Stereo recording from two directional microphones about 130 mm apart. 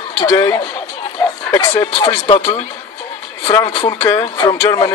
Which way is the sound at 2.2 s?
55° left (ahead or behind).